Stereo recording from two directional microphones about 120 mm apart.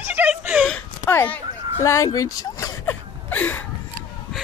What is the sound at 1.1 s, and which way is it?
Speech, 15° left (ahead or behind).